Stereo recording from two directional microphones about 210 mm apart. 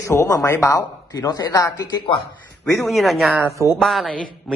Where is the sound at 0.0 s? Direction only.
10° left (ahead or behind).